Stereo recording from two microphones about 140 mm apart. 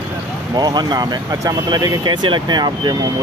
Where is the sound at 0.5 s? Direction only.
30° right (ahead or behind).